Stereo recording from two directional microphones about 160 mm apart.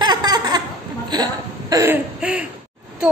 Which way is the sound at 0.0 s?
25° right (ahead or behind).